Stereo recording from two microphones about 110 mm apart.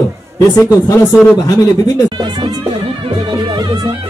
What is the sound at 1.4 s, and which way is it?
Speech, 35° left (ahead or behind).